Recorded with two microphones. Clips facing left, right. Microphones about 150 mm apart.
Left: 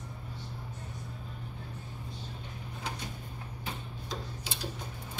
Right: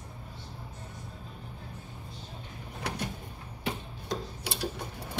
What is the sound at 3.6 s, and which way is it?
Tick-tock, 70° right (ahead or behind).